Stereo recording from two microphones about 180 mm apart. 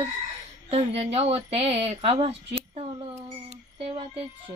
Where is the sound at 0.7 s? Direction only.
35° right (ahead or behind).